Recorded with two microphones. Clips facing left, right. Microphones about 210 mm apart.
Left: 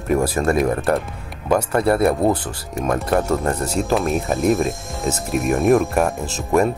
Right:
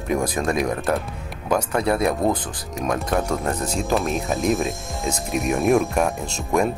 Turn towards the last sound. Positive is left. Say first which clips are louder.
# left 4 dB
turn(degrees=5)  # may be behind; listen again after turning